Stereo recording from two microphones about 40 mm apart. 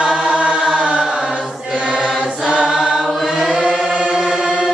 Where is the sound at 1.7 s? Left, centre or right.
Right.